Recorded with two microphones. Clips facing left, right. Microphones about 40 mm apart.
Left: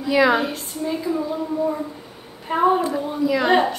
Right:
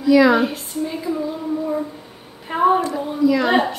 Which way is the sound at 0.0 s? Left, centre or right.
Centre.